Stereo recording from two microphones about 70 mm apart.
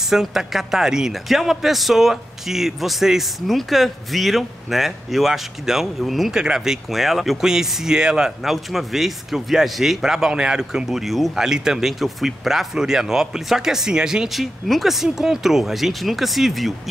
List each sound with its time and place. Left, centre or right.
0.1 s a man's voice: centre